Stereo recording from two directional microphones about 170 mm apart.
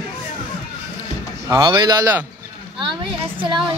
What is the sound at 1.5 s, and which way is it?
Speech, 20° right (ahead or behind).